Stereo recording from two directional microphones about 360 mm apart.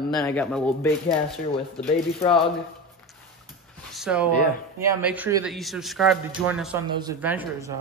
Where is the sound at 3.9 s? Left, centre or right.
Centre.